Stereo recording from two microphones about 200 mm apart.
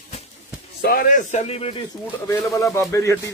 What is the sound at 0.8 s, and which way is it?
A man's voice, 50° left (ahead or behind).